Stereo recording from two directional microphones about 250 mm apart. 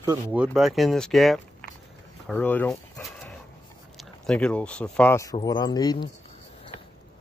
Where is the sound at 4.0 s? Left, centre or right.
Centre.